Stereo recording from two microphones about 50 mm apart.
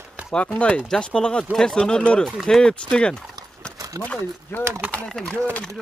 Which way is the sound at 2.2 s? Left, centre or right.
Centre.